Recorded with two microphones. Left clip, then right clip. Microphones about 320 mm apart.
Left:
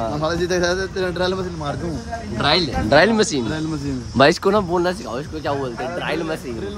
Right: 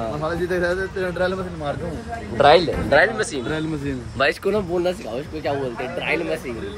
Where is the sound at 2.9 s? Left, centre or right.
Centre.